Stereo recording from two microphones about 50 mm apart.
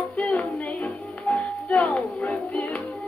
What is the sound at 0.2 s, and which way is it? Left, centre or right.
Music, centre.